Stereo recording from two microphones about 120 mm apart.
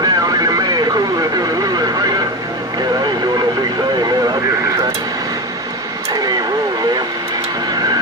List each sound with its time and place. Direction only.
0.0 s radio: 30° right (ahead or behind)
1.6 s vehicle: 30° right (ahead or behind)